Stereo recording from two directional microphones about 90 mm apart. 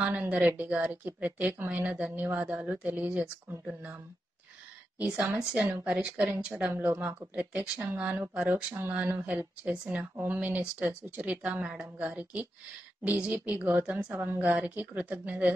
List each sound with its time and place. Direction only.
0.0 s speech: 15° right (ahead or behind)
4.9 s a woman's voice: 20° right (ahead or behind)
12.0 s speech: 5° right (ahead or behind)
13.6 s speech: 15° right (ahead or behind)